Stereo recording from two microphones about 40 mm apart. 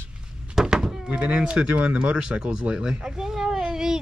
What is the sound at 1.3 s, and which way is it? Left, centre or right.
Speech, right.